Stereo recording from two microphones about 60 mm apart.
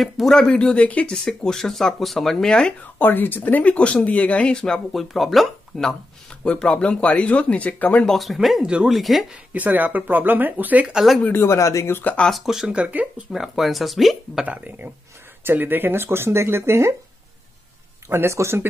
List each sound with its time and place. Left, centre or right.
0.0 s speech: centre; by 1.1 s left
1.1 s speech: centre
2.8 s speech: left; by 5.0 s centre
5.0 s speech: centre; by 8.0 s left
8.0 s speech: centre
9.5 s speech: right
11.3 s speech: left
11.9 s speech: left
12.3 s speech: centre
12.7 s speech: right
13.3 s speech: centre
14.4 s speech: right
18.0 s speech: right